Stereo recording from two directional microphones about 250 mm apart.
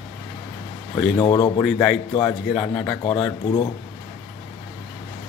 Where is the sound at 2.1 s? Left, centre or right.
Centre.